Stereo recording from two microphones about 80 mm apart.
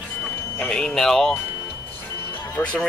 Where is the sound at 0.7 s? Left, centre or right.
Centre.